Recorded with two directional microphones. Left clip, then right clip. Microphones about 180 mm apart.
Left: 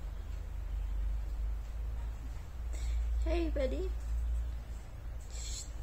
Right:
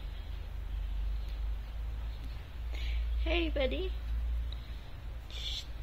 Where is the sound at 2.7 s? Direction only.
15° right (ahead or behind).